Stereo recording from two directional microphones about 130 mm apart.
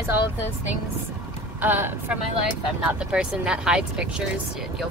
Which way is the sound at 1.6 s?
15° right (ahead or behind).